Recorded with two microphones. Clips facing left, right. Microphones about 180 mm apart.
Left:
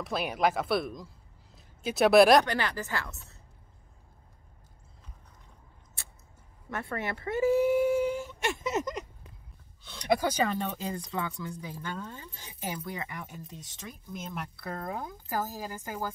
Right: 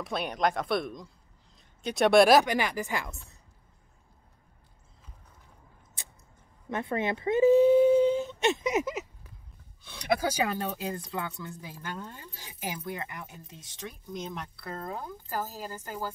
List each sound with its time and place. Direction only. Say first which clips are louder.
0.0 s speech: left 1 dB; centre (ahead or behind)
2.4 s speech: right 2 dB; 15° right (ahead or behind)
6.0 s a sound: right 2 dB; 20° right (ahead or behind)
6.7 s speech: right 5 dB; 20° right (ahead or behind)
8.7 s speech: right 2 dB; 5° right (ahead or behind)
13.5 s speech: right 2 dB; centre (ahead or behind)
14.6 s speech: left 2 dB; 15° left (ahead or behind)